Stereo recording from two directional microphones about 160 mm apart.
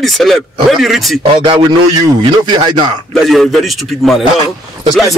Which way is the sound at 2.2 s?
30° right (ahead or behind).